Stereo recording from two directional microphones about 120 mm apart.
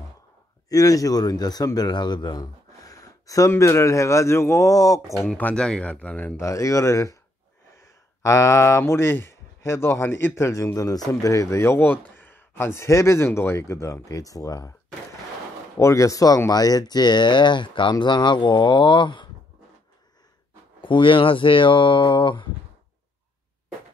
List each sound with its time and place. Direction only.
0.7 s speech: 30° left (ahead or behind)
5.3 s speech: 10° left (ahead or behind)
6.4 s speech: 25° left (ahead or behind)
15.8 s speech: 25° left (ahead or behind)
20.8 s speech: 45° left (ahead or behind)